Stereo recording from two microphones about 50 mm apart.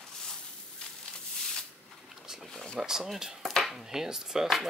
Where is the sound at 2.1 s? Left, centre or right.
Centre.